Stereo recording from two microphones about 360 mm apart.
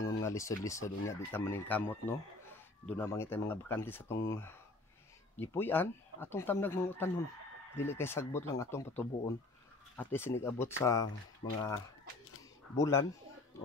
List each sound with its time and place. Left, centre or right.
0.0 s speech: centre
12.7 s speech: centre